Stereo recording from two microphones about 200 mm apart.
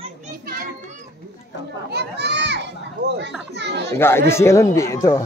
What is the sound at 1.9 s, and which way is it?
A child's voice, 55° right (ahead or behind).